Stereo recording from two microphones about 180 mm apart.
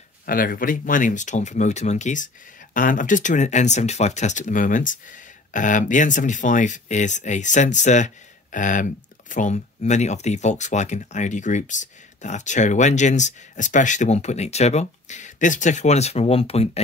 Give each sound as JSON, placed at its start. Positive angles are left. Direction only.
{"t": 0.3, "sound": "speech", "side_deg": 50}